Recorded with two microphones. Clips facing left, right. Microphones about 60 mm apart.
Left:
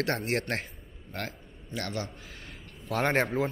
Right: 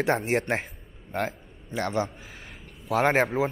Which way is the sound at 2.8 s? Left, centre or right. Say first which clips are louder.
Right 5 dB; centre.